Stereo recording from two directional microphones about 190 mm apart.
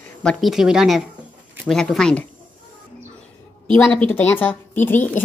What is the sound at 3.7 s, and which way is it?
A woman's voice, 10° left (ahead or behind).